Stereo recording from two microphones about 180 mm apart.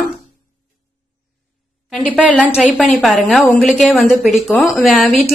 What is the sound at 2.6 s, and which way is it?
A woman's voice, 5° left (ahead or behind).